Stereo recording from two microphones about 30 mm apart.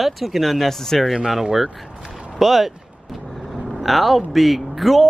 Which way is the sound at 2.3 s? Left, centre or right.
Centre.